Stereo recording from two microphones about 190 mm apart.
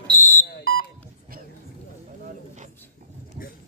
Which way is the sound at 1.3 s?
50° right (ahead or behind).